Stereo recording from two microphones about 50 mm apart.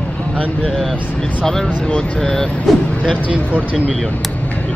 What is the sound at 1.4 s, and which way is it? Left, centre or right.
Speech, centre.